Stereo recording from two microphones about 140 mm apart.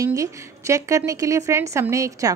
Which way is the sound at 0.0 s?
25° right (ahead or behind).